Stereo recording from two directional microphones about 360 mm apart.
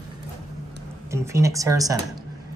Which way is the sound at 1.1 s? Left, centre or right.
Centre.